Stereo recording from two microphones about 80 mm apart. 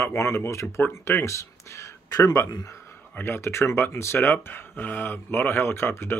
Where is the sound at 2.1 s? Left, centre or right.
Left.